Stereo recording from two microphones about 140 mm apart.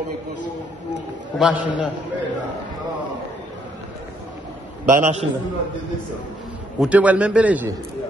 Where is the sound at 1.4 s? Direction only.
5° right (ahead or behind).